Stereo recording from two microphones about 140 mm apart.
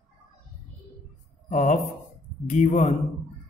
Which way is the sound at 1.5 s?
65° left (ahead or behind).